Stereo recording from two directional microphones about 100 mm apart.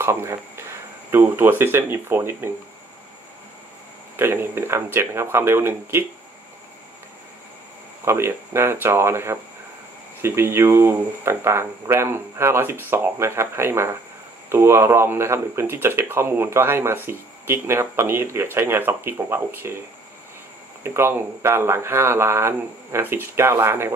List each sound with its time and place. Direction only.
0.0 s speech: 25° right (ahead or behind)
4.2 s speech: 25° right (ahead or behind)
8.0 s speech: 25° right (ahead or behind)
20.8 s speech: 25° right (ahead or behind)